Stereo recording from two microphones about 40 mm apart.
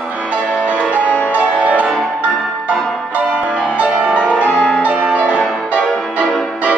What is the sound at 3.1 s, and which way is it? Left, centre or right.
Music, right.